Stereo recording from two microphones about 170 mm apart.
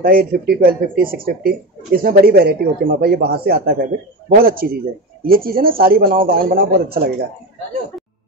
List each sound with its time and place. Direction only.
0.0 s speech: 60° right (ahead or behind)